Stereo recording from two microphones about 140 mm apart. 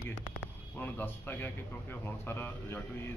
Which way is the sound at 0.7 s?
15° left (ahead or behind).